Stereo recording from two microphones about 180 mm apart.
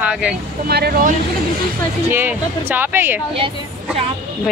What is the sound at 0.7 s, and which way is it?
Speech, 60° right (ahead or behind).